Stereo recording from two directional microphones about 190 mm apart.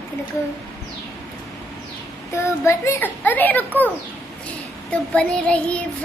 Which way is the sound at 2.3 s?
15° left (ahead or behind).